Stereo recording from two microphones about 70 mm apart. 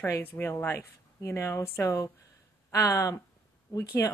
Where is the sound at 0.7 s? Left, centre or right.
Left.